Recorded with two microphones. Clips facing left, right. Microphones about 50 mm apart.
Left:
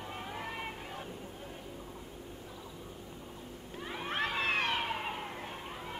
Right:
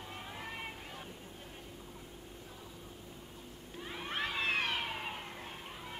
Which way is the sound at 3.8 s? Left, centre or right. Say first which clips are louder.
Left 3 dB; centre.